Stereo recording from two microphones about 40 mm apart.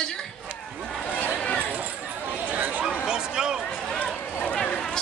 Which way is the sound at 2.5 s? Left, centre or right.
Right.